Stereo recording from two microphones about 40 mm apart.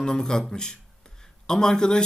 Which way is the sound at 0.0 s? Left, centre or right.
Centre.